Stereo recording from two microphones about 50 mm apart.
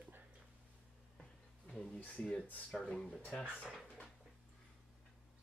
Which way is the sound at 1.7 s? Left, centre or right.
Centre.